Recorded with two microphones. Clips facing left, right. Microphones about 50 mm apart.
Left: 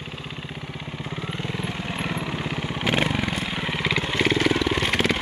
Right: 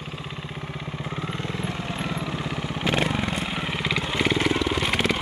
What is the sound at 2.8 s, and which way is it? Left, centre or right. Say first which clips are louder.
Vehicle: left 1 dB; centre.